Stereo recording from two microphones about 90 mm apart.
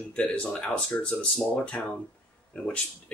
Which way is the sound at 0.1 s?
15° left (ahead or behind).